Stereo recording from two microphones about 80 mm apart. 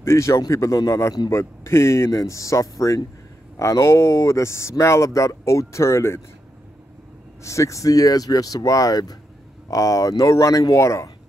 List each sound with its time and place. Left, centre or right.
0.0 s speech: left
7.4 s speech: left